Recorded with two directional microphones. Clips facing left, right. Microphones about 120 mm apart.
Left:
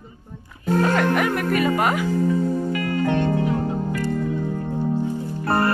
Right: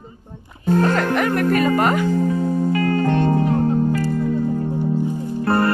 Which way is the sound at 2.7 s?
35° right (ahead or behind).